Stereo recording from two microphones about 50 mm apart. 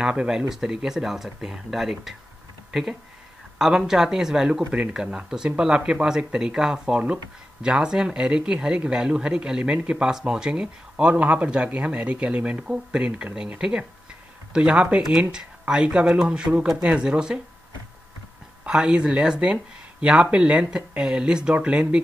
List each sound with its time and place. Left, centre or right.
0.0 s speech: centre
18.7 s speech: centre